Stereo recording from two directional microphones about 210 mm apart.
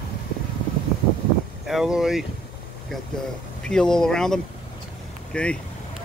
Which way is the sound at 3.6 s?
5° left (ahead or behind).